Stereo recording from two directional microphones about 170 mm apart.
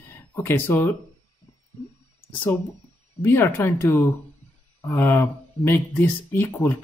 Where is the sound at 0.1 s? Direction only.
15° left (ahead or behind).